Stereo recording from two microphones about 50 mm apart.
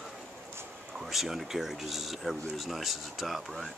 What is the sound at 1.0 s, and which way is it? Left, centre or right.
Speech, centre.